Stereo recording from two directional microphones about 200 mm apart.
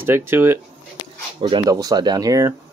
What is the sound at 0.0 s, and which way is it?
Speech, 10° right (ahead or behind).